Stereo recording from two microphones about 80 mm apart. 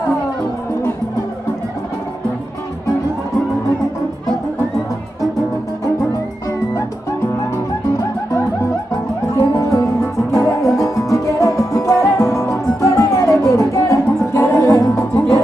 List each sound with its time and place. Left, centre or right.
9.3 s music: left